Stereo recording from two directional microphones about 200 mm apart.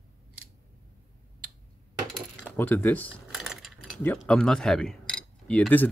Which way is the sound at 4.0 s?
5° left (ahead or behind).